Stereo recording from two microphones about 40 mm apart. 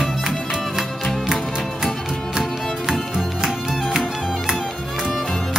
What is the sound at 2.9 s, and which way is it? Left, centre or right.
Music, centre.